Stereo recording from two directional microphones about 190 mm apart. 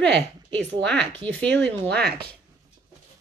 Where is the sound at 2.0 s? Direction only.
55° right (ahead or behind).